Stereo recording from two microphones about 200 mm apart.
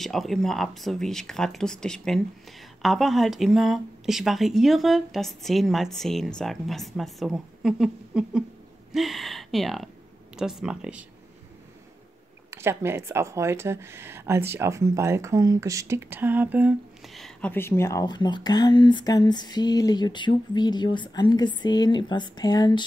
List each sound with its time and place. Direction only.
0.0 s speech: centre (ahead or behind)
12.4 s speech: 10° right (ahead or behind); by 22.8 s 20° left (ahead or behind)